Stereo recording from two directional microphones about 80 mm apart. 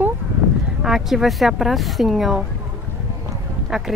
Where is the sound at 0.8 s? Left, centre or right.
Centre.